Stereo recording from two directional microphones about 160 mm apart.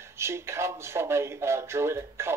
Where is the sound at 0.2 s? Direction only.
15° right (ahead or behind).